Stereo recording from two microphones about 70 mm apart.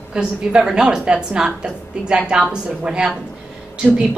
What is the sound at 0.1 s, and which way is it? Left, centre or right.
A woman's voice, centre.